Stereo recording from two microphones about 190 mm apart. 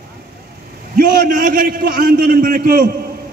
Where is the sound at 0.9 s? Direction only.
50° right (ahead or behind).